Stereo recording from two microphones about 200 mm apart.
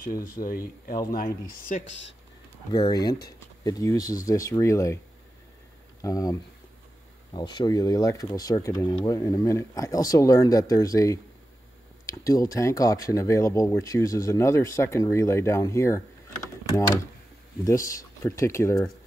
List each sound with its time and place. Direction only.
0.5 s speech: 45° left (ahead or behind)
1.9 s speech: 65° left (ahead or behind)
2.7 s speech: 20° left (ahead or behind)
6.0 s speech: 15° left (ahead or behind)
7.3 s speech: 20° left (ahead or behind)
17.6 s speech: 15° left (ahead or behind)